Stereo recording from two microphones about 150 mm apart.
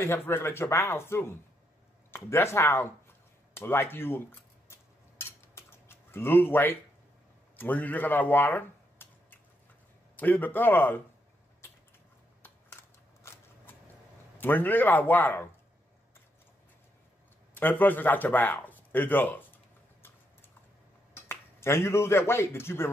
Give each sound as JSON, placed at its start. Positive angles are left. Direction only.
{"t": 0.0, "sound": "speech", "side_deg": 15}
{"t": 3.5, "sound": "cutlery", "side_deg": 15}
{"t": 7.5, "sound": "speech", "side_deg": 10}
{"t": 14.4, "sound": "speech", "side_deg": 15}
{"t": 17.6, "sound": "speech", "side_deg": 10}
{"t": 21.3, "sound": "speech", "side_deg": 15}